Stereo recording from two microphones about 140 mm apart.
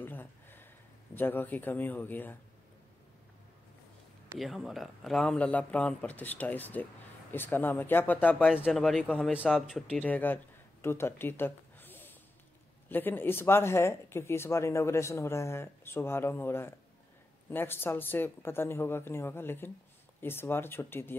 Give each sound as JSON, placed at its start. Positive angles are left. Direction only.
{"t": 0.0, "sound": "a sound", "side_deg": 15}
{"t": 1.1, "sound": "speech", "side_deg": 15}
{"t": 4.4, "sound": "speech", "side_deg": 0}
{"t": 8.6, "sound": "speech", "side_deg": 0}
{"t": 9.3, "sound": "speech", "side_deg": -5}